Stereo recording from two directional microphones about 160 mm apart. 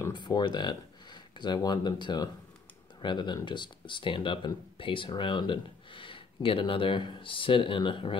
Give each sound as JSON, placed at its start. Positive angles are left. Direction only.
{"t": 0.1, "sound": "speech", "side_deg": 25}